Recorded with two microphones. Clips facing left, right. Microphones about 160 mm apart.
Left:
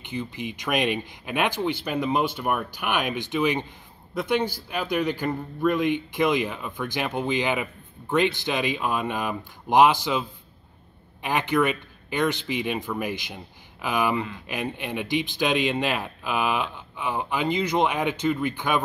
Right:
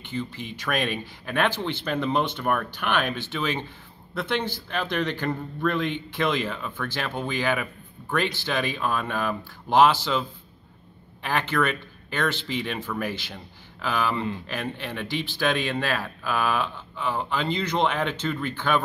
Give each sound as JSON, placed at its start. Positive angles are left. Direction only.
{"t": 0.0, "sound": "a man's voice", "side_deg": 15}
{"t": 11.2, "sound": "a man's voice", "side_deg": 15}